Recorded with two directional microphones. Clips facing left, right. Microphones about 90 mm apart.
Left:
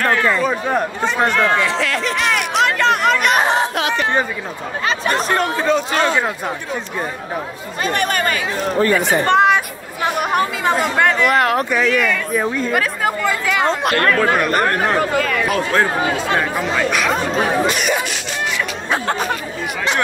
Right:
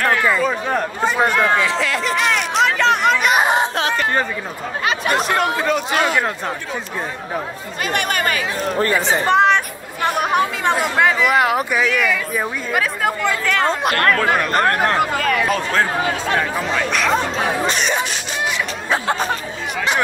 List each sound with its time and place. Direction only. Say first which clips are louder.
0.1 s a man's voice: left 1 dB; 5° right (ahead or behind)
0.4 s speech: left 1 dB; 5° left (ahead or behind)
1.0 s speech: right 1 dB; 10° right (ahead or behind)
3.5 s chatter: even; 35° right (ahead or behind)
4.8 s speech: even; 35° left (ahead or behind)
7.8 s speech: left 2 dB; 35° left (ahead or behind)
8.9 s speech: even; centre (ahead or behind)
17.6 s speech: left 1 dB; 30° right (ahead or behind)